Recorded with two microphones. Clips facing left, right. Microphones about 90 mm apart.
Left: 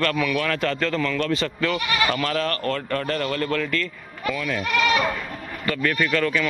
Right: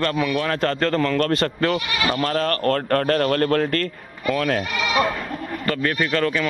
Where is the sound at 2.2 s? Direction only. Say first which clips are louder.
Right 3 dB; 40° right (ahead or behind).